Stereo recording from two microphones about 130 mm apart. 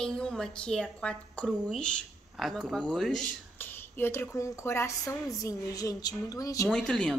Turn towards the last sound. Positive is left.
turn(degrees=5)  # may be behind; listen again after turning